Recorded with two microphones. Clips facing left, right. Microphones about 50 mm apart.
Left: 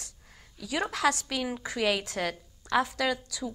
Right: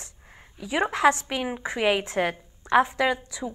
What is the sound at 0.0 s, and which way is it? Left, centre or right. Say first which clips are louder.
A woman's voice: right 4 dB; right.